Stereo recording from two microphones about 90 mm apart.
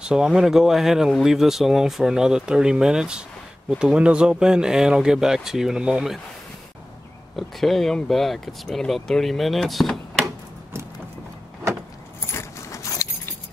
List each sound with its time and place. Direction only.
0.0 s speech: 10° right (ahead or behind)
7.3 s speech: centre (ahead or behind)
12.3 s keys jangling: 30° left (ahead or behind)